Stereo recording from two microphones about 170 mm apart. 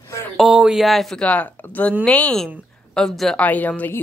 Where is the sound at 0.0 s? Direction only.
15° left (ahead or behind).